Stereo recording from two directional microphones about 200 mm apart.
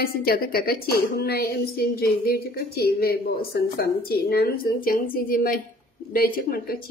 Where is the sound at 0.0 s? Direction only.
50° left (ahead or behind).